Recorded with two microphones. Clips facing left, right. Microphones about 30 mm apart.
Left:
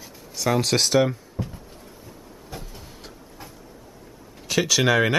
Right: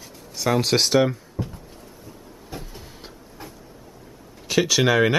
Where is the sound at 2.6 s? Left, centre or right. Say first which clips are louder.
Right 1 dB; centre.